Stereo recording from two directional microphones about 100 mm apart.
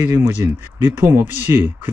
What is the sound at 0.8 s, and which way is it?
Speech, 25° right (ahead or behind).